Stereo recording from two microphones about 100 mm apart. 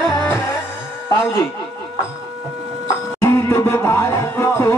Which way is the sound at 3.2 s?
25° left (ahead or behind).